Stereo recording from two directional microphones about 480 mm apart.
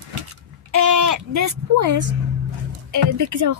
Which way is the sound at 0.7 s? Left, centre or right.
Right.